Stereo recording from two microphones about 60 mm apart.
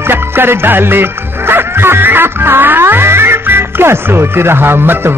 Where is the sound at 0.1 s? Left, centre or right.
Right.